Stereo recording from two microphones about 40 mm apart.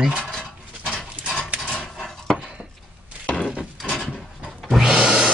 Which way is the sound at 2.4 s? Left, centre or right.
Right.